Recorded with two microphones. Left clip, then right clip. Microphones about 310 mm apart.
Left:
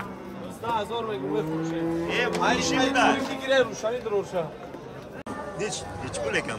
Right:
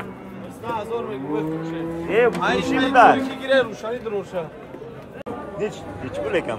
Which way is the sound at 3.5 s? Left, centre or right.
Left.